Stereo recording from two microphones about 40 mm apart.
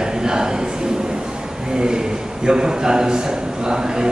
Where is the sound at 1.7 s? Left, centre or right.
Centre.